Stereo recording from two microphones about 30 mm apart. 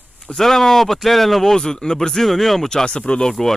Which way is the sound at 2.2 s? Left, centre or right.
Centre.